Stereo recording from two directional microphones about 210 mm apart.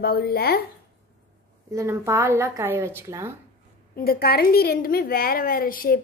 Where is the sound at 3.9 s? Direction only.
45° left (ahead or behind).